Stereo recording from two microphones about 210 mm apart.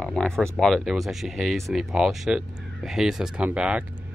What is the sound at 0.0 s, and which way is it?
Speech, 5° left (ahead or behind).